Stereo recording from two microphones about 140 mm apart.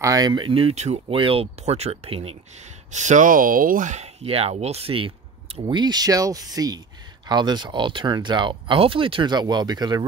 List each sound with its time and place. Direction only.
0.0 s speech: 25° right (ahead or behind)